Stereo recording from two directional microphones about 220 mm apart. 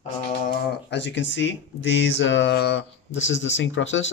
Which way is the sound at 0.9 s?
55° left (ahead or behind).